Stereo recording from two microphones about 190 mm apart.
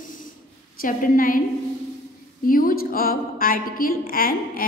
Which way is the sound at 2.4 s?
50° left (ahead or behind).